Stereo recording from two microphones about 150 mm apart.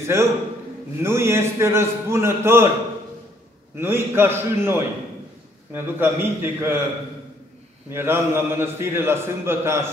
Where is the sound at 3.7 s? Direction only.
15° right (ahead or behind).